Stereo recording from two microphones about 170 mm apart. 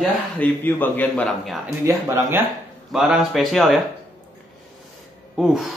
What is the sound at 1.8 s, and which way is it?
Speech, 15° right (ahead or behind).